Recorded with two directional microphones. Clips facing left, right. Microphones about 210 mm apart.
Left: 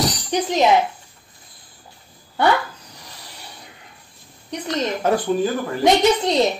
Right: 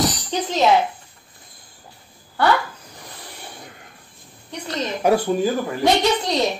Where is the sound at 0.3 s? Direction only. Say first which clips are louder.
Left 5 dB; 15° left (ahead or behind).